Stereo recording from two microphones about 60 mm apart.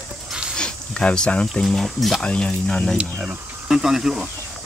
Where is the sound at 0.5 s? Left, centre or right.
Centre.